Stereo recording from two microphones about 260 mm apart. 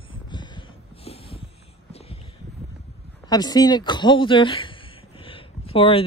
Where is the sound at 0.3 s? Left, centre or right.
Centre.